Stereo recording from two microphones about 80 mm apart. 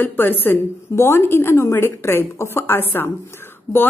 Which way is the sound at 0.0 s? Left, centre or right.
Left.